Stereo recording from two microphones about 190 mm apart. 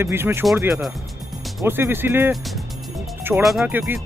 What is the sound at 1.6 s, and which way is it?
Speech, 10° right (ahead or behind).